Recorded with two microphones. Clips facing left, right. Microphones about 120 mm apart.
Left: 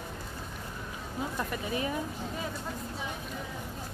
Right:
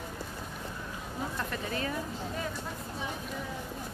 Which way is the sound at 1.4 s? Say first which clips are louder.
Left 2 dB; 15° left (ahead or behind).